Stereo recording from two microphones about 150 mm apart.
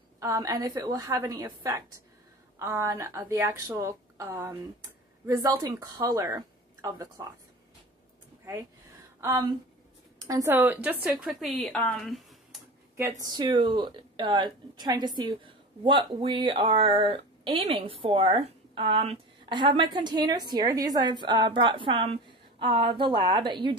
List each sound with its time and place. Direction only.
0.2 s speech: 25° right (ahead or behind)
10.2 s speech: 20° right (ahead or behind); by 11.7 s centre (ahead or behind)
11.7 s a sound: 5° left (ahead or behind)
13.2 s a woman's voice: 30° right (ahead or behind)